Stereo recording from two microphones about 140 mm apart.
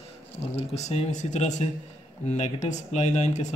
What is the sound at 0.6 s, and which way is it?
Speech, 50° left (ahead or behind).